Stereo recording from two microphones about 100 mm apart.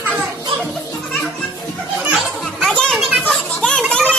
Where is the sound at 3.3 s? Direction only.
5° left (ahead or behind).